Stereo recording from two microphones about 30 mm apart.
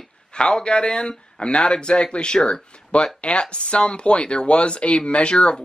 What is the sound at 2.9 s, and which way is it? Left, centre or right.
Speech, left.